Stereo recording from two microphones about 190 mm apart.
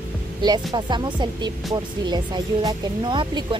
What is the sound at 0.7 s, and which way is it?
Speech, 25° right (ahead or behind).